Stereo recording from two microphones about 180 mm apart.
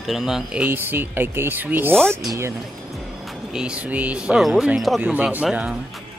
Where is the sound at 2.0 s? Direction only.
5° left (ahead or behind).